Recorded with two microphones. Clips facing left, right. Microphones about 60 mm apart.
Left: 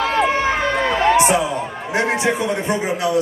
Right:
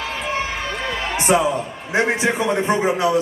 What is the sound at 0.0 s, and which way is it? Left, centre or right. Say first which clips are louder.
Run: left 9 dB; left.